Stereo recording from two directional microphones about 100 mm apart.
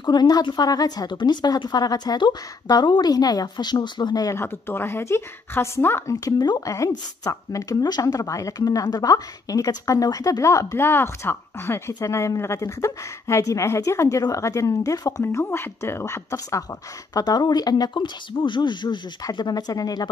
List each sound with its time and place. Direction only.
0.0 s speech: 45° left (ahead or behind)
6.3 s speech: 50° left (ahead or behind)
6.6 s speech: 30° left (ahead or behind)